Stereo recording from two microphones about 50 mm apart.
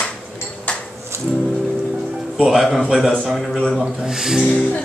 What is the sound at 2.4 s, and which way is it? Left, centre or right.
A man's voice, centre.